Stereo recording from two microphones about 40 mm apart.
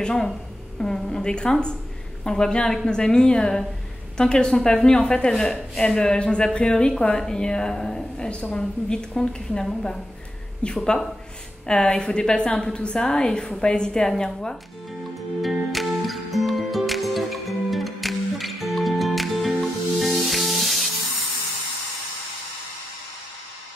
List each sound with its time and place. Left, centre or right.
0.0 s a woman's voice: centre
10.6 s a woman's voice: left
15.7 s music: centre